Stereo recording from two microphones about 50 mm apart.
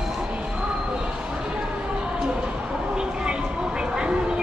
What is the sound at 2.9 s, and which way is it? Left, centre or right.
Vehicle, centre.